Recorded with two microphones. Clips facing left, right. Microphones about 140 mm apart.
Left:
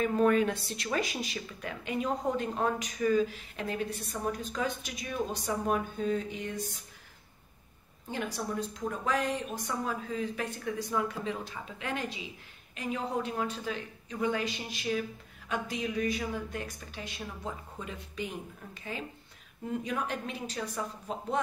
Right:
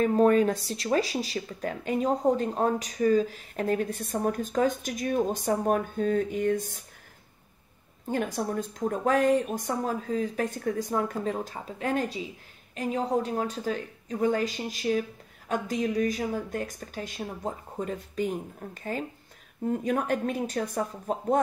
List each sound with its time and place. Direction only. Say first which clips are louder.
0.0 s speech: right 5 dB; 35° right (ahead or behind)
8.1 s speech: right 6 dB; 45° right (ahead or behind)